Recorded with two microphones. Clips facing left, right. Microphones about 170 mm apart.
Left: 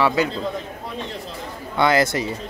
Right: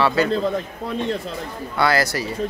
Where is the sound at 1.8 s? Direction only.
20° left (ahead or behind).